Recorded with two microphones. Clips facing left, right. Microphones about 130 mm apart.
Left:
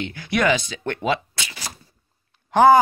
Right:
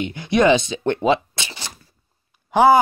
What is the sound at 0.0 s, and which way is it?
Speech, 20° right (ahead or behind).